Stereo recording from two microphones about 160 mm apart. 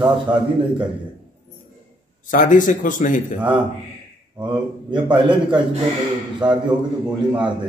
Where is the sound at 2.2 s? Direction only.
55° left (ahead or behind).